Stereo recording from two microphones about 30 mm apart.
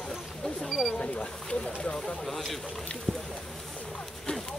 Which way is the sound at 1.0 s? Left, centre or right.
Left.